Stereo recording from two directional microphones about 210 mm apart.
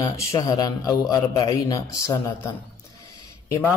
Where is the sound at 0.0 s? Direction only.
15° left (ahead or behind).